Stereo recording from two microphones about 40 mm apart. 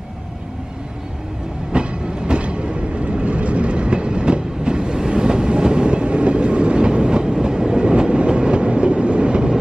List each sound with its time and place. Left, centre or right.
1.7 s train: right